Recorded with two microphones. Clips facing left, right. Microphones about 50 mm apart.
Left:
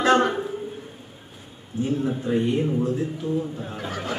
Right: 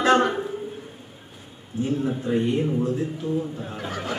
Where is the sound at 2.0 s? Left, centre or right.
Centre.